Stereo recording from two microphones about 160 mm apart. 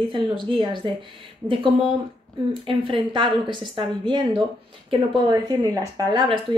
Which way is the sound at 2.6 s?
35° right (ahead or behind).